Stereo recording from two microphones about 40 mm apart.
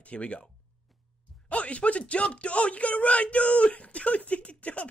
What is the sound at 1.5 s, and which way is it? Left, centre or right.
Speech, left.